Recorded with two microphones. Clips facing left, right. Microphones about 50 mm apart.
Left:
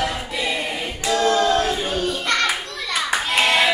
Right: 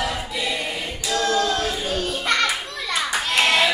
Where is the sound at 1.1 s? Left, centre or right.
Left.